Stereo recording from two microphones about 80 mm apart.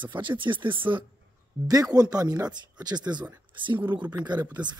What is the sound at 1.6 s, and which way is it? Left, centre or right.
Speech, right.